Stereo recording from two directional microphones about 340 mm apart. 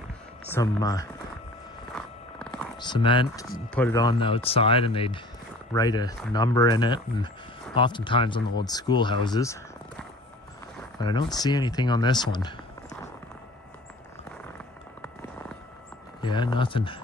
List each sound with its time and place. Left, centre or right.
0.5 s speech: centre
2.0 s zipper: centre
3.7 s speech: centre
16.2 s speech: centre